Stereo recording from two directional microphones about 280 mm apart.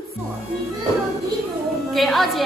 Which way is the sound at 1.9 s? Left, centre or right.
Centre.